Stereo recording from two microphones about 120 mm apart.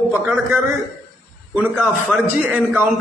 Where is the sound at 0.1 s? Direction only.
15° right (ahead or behind).